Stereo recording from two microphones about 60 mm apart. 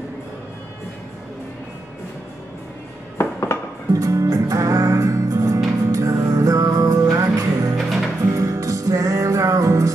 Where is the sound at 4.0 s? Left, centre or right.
Right.